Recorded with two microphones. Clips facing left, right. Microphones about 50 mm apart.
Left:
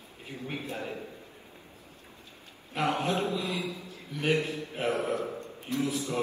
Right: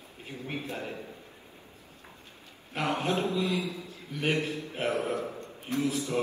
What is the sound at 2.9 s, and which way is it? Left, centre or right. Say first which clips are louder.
Speech: right 1 dB; right.